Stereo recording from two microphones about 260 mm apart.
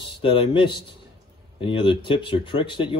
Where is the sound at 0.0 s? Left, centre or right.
Centre.